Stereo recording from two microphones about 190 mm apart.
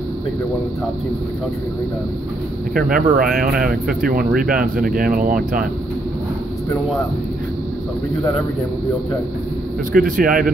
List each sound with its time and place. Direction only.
2.7 s speech: 50° right (ahead or behind)
9.9 s speech: 45° right (ahead or behind)